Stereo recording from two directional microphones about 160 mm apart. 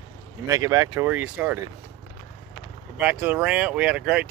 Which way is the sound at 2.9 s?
10° right (ahead or behind).